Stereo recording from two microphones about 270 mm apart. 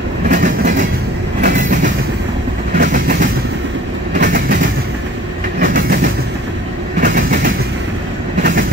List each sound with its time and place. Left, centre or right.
0.3 s train: right
7.0 s train: right